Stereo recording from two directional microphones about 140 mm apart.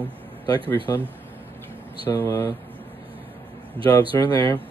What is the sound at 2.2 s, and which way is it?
Mantra, 15° left (ahead or behind).